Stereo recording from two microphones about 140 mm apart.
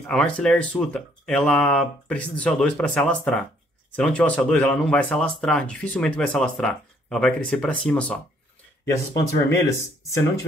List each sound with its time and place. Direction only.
0.0 s speech: 5° left (ahead or behind)
8.8 s speech: 25° left (ahead or behind)